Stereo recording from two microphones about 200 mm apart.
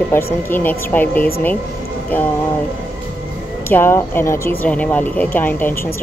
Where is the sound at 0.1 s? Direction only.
10° left (ahead or behind).